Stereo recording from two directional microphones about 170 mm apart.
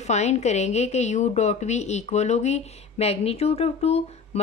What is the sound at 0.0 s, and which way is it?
A woman's voice, 40° left (ahead or behind).